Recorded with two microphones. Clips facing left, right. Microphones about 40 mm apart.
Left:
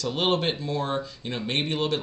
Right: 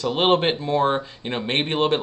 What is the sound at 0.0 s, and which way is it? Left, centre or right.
Speech, right.